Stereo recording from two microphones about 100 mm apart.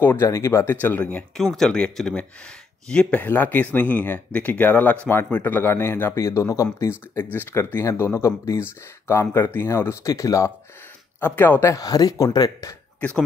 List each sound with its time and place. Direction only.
0.0 s speech: 25° left (ahead or behind)
0.7 s speech: 15° left (ahead or behind)
1.3 s speech: 5° left (ahead or behind); by 10.5 s 35° left (ahead or behind)
11.1 s speech: 20° left (ahead or behind)
11.7 s speech: 40° left (ahead or behind)